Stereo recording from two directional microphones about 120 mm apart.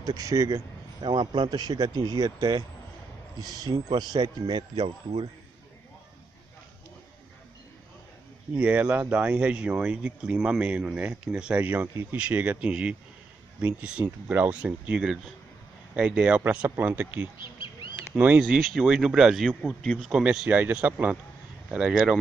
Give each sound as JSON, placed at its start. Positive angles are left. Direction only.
{"t": 0.0, "sound": "speech", "side_deg": -30}
{"t": 1.0, "sound": "speech", "side_deg": -40}
{"t": 8.5, "sound": "speech", "side_deg": -10}
{"t": 17.9, "sound": "a sound", "side_deg": -15}
{"t": 18.4, "sound": "speech", "side_deg": -5}